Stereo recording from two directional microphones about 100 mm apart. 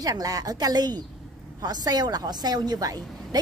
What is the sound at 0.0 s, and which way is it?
A woman's voice, 35° right (ahead or behind).